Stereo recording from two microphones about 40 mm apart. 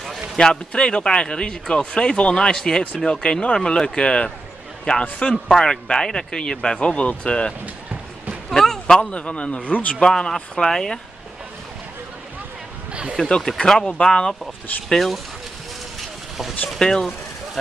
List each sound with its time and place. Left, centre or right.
0.4 s speech: centre
7.6 s run: right
8.5 s speech: centre
9.1 s speech: left
9.9 s speech: centre
13.2 s speech: left
14.9 s speech: centre
16.3 s speech: centre
16.8 s speech: centre